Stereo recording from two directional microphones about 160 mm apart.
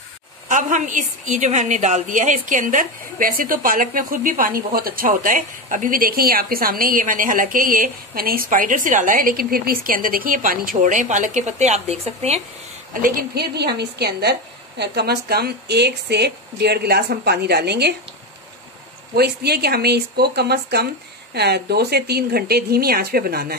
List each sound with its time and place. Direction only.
0.5 s a woman's voice: 55° right (ahead or behind)
12.9 s speech: 75° right (ahead or behind); by 17.9 s 90° right
19.1 s speech: 85° right